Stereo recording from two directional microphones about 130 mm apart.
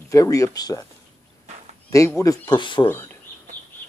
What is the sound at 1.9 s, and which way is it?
Speech, 25° left (ahead or behind).